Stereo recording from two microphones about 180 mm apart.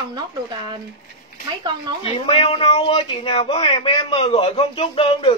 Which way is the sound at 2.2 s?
30° left (ahead or behind).